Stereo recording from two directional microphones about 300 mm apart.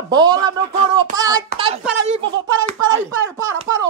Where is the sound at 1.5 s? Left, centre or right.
Centre.